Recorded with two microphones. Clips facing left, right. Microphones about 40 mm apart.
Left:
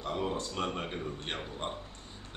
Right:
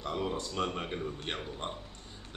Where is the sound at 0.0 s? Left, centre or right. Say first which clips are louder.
Left 1 dB; centre.